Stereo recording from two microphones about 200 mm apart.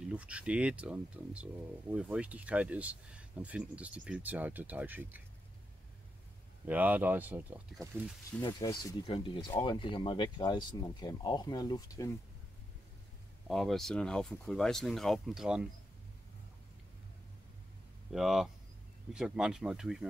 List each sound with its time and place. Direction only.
0.1 s speech: 5° right (ahead or behind)
6.6 s speech: 10° right (ahead or behind)
8.4 s speech: 20° left (ahead or behind)
13.5 s speech: centre (ahead or behind)
18.1 s speech: centre (ahead or behind)